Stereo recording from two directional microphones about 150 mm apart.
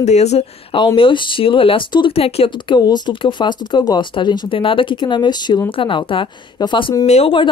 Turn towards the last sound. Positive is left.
turn(degrees=35)  # may be behind; listen again after turning